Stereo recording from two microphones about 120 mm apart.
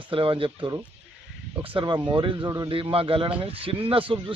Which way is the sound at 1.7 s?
40° right (ahead or behind).